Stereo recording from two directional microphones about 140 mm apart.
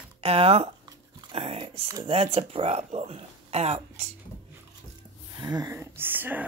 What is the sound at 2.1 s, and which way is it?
Speech, 45° right (ahead or behind).